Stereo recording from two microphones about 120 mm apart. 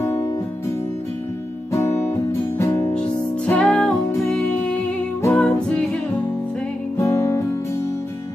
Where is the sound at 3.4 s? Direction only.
10° left (ahead or behind).